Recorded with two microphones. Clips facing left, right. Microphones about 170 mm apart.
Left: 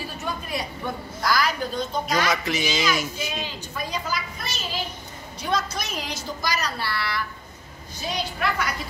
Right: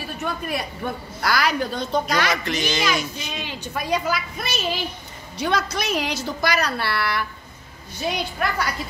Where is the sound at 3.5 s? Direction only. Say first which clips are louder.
Right 7 dB; 70° right (ahead or behind).